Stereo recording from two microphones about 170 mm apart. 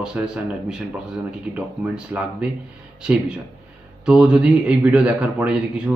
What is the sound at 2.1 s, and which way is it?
A man's voice, 15° right (ahead or behind).